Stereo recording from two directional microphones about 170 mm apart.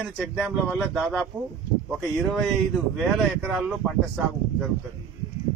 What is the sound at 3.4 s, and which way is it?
Speech, 5° right (ahead or behind).